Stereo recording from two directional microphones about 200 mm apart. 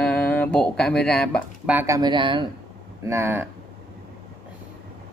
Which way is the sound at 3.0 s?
10° right (ahead or behind).